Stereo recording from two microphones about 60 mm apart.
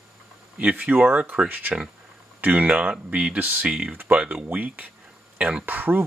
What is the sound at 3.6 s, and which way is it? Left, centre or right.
Speech, centre.